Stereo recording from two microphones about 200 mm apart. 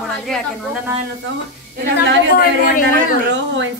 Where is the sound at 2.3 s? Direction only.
45° left (ahead or behind).